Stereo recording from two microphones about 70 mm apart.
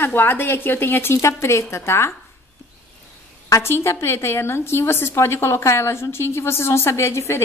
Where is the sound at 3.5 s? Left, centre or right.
Left.